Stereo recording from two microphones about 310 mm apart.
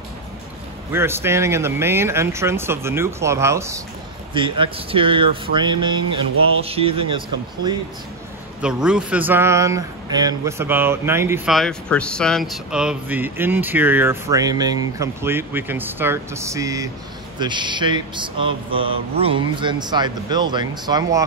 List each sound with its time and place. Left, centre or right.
0.9 s speech: centre
8.5 s speech: centre